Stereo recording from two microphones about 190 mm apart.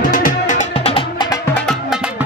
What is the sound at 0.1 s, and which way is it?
Music, 45° left (ahead or behind).